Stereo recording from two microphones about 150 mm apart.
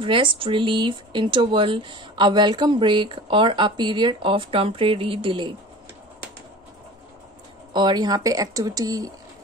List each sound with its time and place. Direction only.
0.0 s speech: 35° right (ahead or behind)
7.7 s speech: 30° right (ahead or behind)